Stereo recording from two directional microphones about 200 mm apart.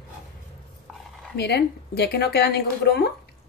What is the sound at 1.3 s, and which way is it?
Speech, 55° left (ahead or behind).